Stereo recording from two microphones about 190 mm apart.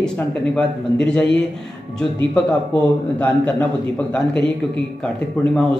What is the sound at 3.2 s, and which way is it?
Speech, 10° left (ahead or behind).